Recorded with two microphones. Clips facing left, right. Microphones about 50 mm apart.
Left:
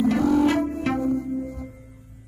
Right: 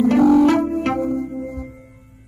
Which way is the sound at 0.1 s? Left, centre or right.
Right.